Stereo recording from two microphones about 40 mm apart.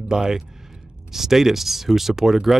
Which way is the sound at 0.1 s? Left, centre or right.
Centre.